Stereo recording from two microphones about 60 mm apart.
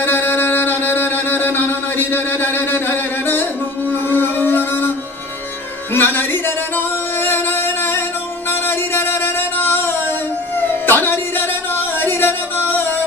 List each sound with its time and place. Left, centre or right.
0.0 s music: left
5.9 s music: left
10.6 s a sound: left